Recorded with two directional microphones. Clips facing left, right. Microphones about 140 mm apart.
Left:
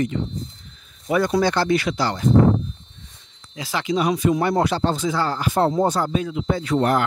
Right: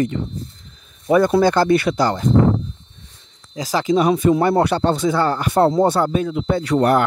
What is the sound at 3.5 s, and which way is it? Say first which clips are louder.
Speech: right 5 dB; 40° right (ahead or behind).